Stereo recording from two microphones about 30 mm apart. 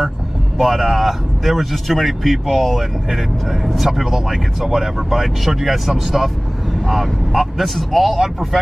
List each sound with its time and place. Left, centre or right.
0.6 s speech: centre
3.7 s speech: centre